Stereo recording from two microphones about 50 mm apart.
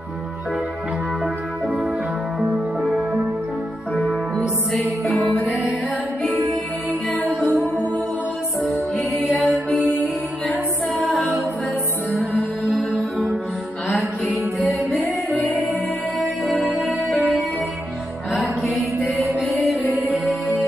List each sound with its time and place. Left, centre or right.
1.2 s music: centre
5.1 s music: left
9.5 s music: left
13.8 s music: centre
15.4 s music: centre
18.3 s music: centre